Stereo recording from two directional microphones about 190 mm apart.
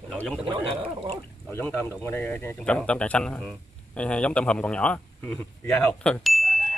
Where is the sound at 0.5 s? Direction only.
30° right (ahead or behind).